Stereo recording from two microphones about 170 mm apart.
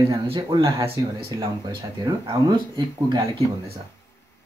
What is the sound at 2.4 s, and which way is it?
Speech, 25° right (ahead or behind).